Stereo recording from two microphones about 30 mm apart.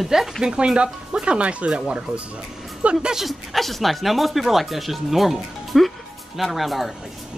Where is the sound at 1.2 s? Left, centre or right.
Right.